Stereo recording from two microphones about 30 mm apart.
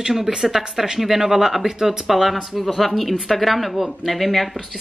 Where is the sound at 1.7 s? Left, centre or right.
Right.